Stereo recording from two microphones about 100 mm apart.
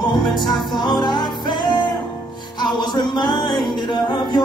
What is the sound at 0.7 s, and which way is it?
Music, 45° left (ahead or behind).